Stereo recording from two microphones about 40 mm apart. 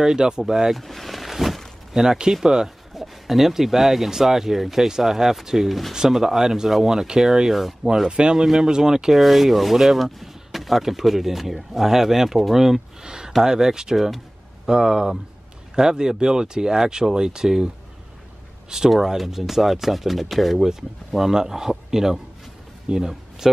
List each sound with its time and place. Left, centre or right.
0.0 s speech: centre
0.7 s vehicle: centre
2.0 s speech: centre
8.1 s speech: right
8.4 s speech: centre
13.0 s speech: centre
13.9 s speech: centre
14.7 s speech: centre
18.9 s speech: centre